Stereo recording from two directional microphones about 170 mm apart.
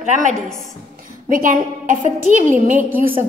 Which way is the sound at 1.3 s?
55° right (ahead or behind).